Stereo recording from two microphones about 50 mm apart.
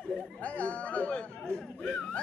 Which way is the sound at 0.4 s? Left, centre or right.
Left.